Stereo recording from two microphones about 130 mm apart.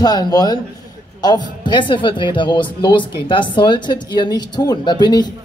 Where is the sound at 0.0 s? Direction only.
30° left (ahead or behind).